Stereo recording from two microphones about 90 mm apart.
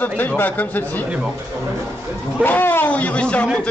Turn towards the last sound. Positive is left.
turn(degrees=10)  # may be behind; listen again after turning